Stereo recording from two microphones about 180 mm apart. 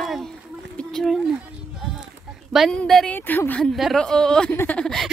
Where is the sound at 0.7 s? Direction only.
Centre (ahead or behind).